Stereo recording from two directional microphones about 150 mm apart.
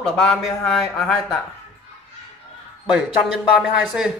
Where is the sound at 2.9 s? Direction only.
5° right (ahead or behind).